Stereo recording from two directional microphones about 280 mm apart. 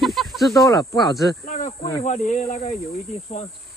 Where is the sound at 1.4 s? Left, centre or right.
Left.